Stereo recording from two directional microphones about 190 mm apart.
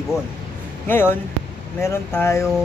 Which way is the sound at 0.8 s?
10° left (ahead or behind).